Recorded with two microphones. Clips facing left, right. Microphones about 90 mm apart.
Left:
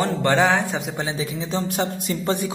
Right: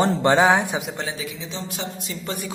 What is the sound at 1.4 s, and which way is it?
Speech, 50° left (ahead or behind).